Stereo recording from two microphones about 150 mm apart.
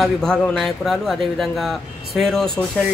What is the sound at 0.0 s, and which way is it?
Speech, 5° left (ahead or behind).